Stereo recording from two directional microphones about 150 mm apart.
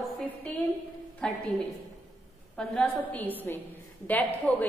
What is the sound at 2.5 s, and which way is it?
A woman's voice, 10° left (ahead or behind).